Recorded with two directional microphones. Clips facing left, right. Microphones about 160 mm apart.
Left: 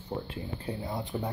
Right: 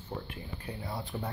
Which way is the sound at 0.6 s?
20° left (ahead or behind).